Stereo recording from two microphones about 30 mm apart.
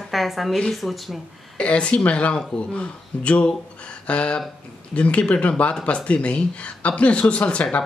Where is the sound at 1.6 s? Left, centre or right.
Left.